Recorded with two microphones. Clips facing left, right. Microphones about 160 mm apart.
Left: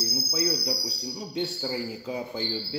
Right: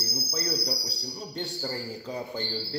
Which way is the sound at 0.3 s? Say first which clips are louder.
Left 3 dB; 5° left (ahead or behind).